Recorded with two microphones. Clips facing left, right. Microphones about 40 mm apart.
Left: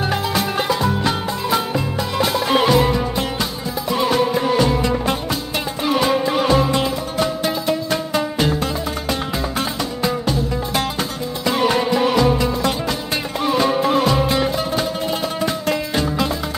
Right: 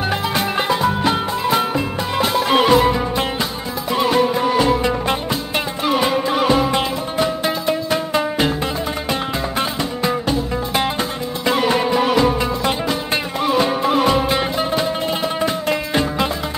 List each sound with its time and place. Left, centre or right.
0.4 s music: right
4.6 s music: centre
11.4 s music: centre